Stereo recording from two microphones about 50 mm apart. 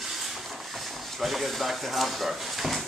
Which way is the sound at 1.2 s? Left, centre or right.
Centre.